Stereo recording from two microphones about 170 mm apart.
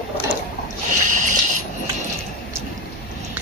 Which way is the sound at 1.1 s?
50° right (ahead or behind).